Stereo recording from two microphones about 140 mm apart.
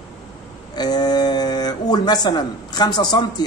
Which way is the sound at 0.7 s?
30° left (ahead or behind).